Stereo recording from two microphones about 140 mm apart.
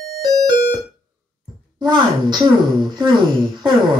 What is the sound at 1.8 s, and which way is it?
A woman's voice, 30° right (ahead or behind).